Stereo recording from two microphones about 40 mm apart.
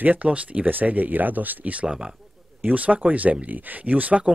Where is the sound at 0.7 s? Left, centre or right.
Right.